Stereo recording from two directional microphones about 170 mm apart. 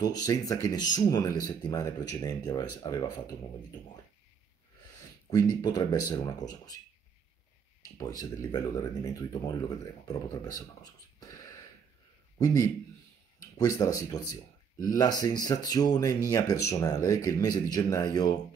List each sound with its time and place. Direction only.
0.0 s speech: 20° left (ahead or behind)
5.3 s speech: 20° left (ahead or behind)
8.0 s speech: 20° left (ahead or behind)